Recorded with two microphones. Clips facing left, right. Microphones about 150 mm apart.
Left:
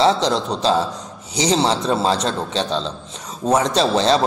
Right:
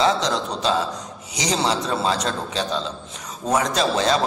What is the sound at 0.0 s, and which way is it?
A man's voice, 30° left (ahead or behind).